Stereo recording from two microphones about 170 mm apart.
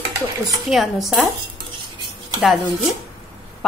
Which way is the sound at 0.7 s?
Centre (ahead or behind).